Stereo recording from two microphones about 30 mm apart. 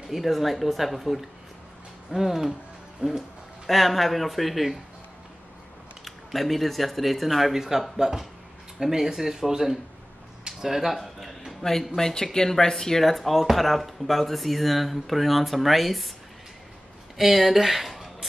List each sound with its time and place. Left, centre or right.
0.1 s speech: centre
3.0 s speech: right
3.6 s speech: centre
6.0 s speech: centre
7.5 s speech: centre
10.4 s a sound: centre
10.9 s a sound: centre
12.0 s speech: centre
17.2 s speech: centre